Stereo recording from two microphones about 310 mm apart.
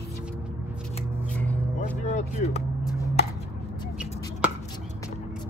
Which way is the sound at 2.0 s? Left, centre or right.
Left.